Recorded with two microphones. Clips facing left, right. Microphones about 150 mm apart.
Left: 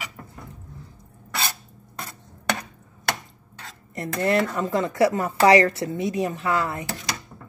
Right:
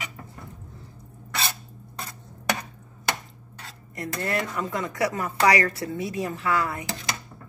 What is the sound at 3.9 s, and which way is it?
Speech, 25° left (ahead or behind).